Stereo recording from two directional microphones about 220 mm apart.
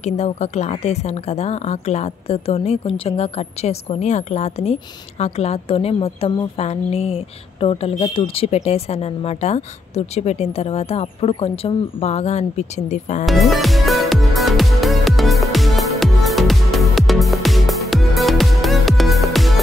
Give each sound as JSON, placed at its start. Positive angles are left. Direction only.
{"t": 0.0, "sound": "speech", "side_deg": 30}
{"t": 13.2, "sound": "music", "side_deg": 0}